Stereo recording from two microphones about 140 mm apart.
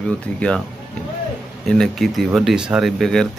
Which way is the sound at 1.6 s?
5° left (ahead or behind).